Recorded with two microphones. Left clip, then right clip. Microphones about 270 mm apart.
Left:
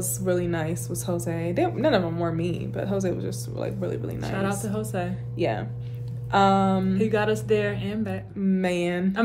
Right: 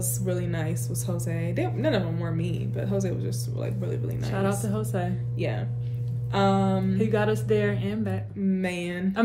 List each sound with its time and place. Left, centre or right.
0.2 s a woman's voice: centre
4.2 s speech: centre
5.4 s a woman's voice: centre
7.0 s speech: centre
8.4 s a woman's voice: left